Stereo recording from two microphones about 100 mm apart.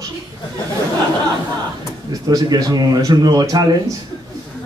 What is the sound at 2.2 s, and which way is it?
Speech, 40° right (ahead or behind).